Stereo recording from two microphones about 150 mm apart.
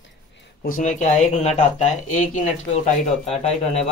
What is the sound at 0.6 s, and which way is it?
Speech, 60° left (ahead or behind).